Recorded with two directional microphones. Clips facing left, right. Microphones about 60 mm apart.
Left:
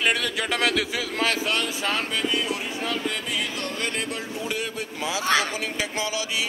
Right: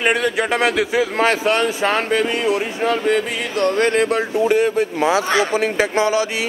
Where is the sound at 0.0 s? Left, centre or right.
Right.